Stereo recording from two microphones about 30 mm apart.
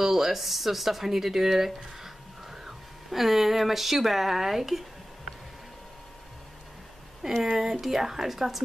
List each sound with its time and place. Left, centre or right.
0.0 s speech: centre
7.2 s speech: centre